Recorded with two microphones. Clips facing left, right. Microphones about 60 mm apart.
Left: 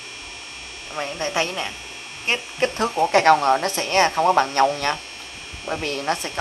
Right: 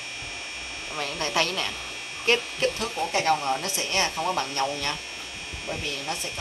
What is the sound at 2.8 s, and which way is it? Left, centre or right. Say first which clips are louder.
Speech: left 12 dB; left.